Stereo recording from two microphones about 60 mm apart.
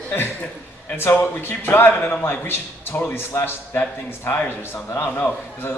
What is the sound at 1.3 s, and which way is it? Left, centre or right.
A man's voice, left.